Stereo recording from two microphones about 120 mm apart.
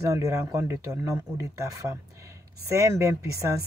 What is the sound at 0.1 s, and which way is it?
Speech, 25° right (ahead or behind).